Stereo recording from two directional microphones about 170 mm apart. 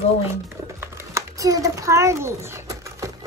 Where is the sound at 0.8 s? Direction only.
15° right (ahead or behind).